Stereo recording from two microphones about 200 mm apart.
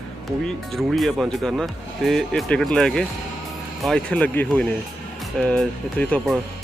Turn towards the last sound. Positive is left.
turn(degrees=5)  # may be behind; listen again after turning